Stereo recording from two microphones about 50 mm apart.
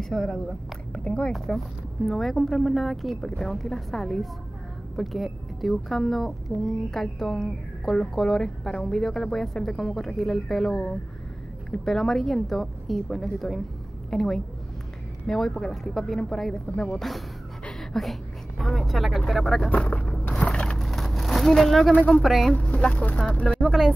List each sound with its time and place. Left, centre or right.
0.0 s speech: centre
0.9 s speech: left
2.0 s a woman's voice: centre
3.2 s a woman's voice: centre
17.7 s a sound: centre
18.6 s a woman's voice: centre
19.6 s speech: left
20.4 s a sound: left
20.7 s vehicle: centre
21.9 s speech: left
22.2 s a woman's voice: centre
22.5 s a sound: left
23.3 s speech: left